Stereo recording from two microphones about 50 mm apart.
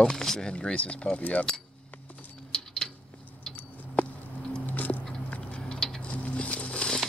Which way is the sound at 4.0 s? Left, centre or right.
Left.